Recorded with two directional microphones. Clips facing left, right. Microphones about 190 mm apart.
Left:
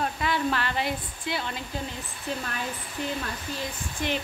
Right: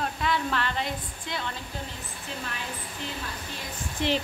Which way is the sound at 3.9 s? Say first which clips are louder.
Right 3 dB; 30° right (ahead or behind).